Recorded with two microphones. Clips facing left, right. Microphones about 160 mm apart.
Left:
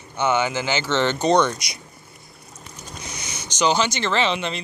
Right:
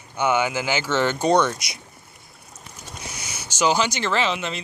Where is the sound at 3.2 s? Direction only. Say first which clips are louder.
Even; 5° right (ahead or behind).